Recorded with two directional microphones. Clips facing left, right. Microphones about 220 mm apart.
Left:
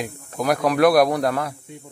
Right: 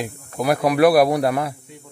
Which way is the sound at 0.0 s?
5° right (ahead or behind).